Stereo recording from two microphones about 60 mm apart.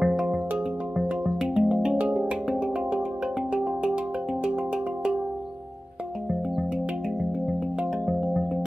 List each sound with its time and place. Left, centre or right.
0.0 s music: centre
3.5 s music: centre
8.1 s music: centre